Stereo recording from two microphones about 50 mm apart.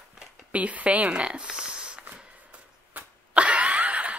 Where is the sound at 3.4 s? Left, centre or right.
Right.